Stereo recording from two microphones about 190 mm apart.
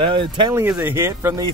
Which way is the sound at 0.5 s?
10° right (ahead or behind).